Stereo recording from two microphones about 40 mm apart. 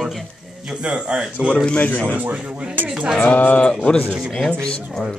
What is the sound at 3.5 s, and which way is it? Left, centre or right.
Speech, left.